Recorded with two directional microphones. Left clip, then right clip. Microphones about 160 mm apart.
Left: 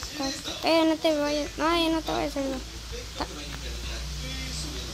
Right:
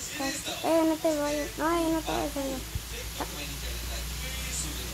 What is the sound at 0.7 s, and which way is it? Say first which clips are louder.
Speech: left 3 dB; 20° left (ahead or behind).